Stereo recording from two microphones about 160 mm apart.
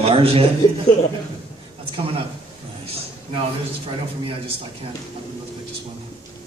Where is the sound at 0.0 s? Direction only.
35° right (ahead or behind).